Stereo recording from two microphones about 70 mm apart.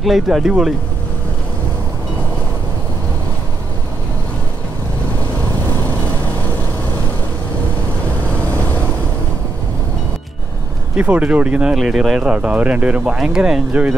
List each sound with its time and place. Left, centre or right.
0.0 s speech: centre
11.0 s speech: centre
11.7 s speech: centre